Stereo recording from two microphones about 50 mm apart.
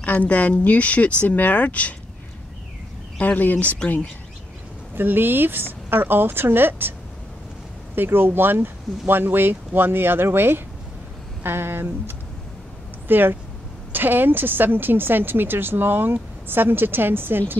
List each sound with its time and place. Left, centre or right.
0.0 s speech: left
3.2 s speech: left
4.9 s a woman's voice: right
7.9 s a woman's voice: right
13.1 s a woman's voice: right